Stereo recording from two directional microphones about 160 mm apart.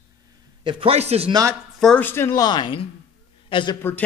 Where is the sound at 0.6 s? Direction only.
40° right (ahead or behind).